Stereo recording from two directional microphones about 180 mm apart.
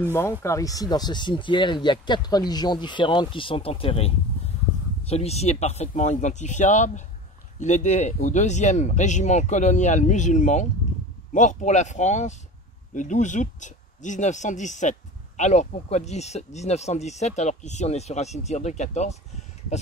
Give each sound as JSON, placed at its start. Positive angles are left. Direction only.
{"t": 0.0, "sound": "speech", "side_deg": 15}